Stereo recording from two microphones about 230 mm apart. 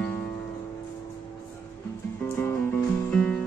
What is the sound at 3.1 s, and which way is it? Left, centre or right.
Music, centre.